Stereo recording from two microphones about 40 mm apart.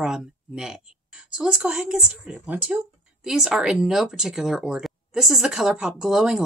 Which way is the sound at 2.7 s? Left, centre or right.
Right.